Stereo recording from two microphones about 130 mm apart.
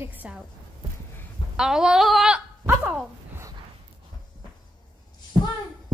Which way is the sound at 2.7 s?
5° right (ahead or behind).